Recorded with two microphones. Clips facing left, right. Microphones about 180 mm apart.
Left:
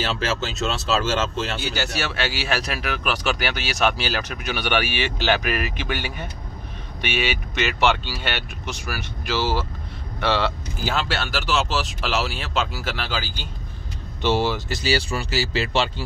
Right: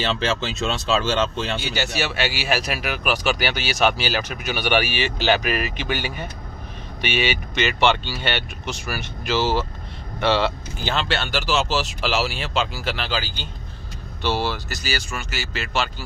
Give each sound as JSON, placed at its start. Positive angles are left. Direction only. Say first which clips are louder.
{"t": 0.0, "sound": "speech", "louder": "right 2 dB", "side_deg": 5}
{"t": 2.1, "sound": "speech", "louder": "right 1 dB", "side_deg": -10}
{"t": 14.2, "sound": "speech", "louder": "left 3 dB", "side_deg": 20}